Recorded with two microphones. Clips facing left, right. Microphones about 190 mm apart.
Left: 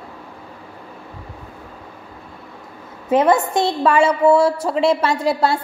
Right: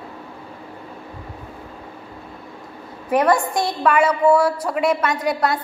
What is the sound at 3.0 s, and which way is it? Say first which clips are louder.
A woman's voice: left 2 dB; 25° left (ahead or behind).